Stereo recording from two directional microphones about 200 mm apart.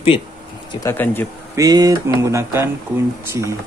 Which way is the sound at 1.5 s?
15° right (ahead or behind).